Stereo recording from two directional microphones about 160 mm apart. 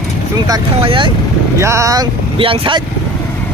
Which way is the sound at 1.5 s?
20° right (ahead or behind).